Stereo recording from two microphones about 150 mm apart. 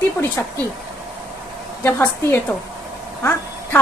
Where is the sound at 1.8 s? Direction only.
15° left (ahead or behind).